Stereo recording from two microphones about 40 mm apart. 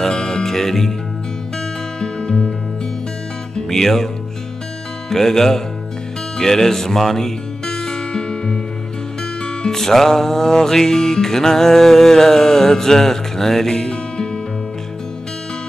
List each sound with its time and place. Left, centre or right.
0.0 s music: centre
2.0 s music: left
3.5 s music: centre
5.1 s music: centre
9.7 s music: centre